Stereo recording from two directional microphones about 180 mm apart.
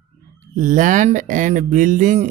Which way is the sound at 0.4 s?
45° right (ahead or behind).